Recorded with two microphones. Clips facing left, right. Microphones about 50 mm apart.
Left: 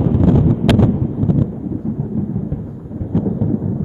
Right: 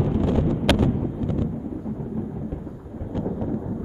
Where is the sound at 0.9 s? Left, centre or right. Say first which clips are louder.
Left 8 dB; centre.